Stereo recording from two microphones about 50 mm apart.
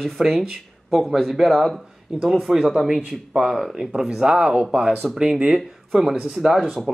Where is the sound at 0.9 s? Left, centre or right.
Centre.